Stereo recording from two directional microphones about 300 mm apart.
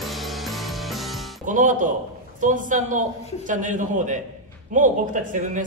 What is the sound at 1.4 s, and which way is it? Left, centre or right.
A man's voice, right.